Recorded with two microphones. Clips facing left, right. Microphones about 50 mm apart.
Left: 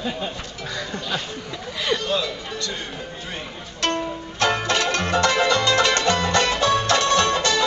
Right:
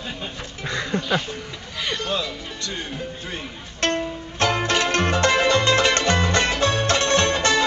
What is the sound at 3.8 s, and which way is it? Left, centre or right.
Music, right.